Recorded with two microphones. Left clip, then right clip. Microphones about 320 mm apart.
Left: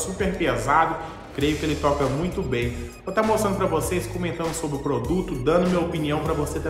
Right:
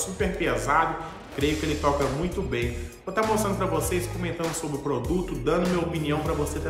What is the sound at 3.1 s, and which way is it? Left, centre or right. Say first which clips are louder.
A man's voice: left 3 dB; centre.